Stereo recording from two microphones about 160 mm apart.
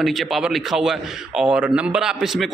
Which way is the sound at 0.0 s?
Centre (ahead or behind).